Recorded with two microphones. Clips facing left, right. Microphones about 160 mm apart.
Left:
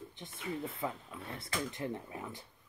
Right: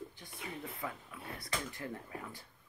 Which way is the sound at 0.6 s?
25° left (ahead or behind).